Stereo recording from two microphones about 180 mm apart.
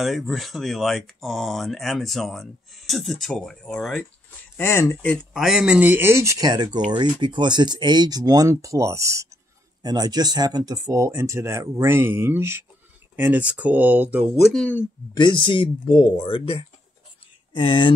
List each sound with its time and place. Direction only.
0.0 s speech: centre (ahead or behind)
4.6 s speech: 15° left (ahead or behind)
5.3 s speech: 5° right (ahead or behind)
14.4 s speech: 5° left (ahead or behind)
15.1 s speech: 25° left (ahead or behind)